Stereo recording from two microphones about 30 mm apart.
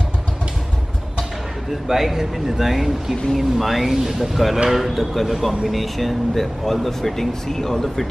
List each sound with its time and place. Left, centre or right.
1.9 s speech: centre